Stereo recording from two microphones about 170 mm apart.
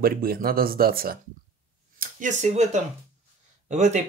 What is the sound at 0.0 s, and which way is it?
Speech, 60° right (ahead or behind).